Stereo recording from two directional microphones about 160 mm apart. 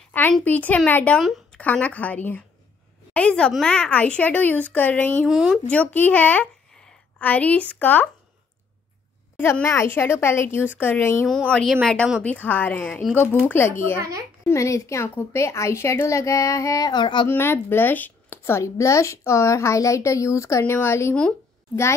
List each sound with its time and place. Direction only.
0.1 s a woman's voice: 10° left (ahead or behind)
5.7 s speech: 10° left (ahead or behind)
9.4 s a woman's voice: 15° left (ahead or behind)
11.5 s a woman's voice: 5° left (ahead or behind); by 17.3 s 30° left (ahead or behind)
17.3 s a woman's voice: 15° left (ahead or behind)